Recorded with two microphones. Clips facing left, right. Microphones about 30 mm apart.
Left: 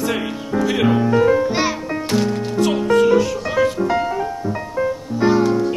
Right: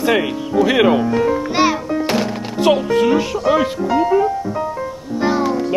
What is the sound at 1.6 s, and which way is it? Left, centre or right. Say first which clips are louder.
Music: right 5 dB; centre.